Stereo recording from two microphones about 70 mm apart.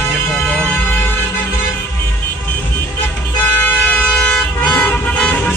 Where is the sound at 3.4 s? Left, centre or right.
Left.